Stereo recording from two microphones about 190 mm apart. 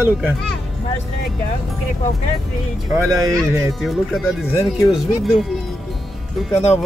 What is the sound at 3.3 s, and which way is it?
Speech, centre (ahead or behind).